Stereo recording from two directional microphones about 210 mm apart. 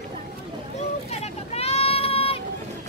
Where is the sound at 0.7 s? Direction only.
30° left (ahead or behind).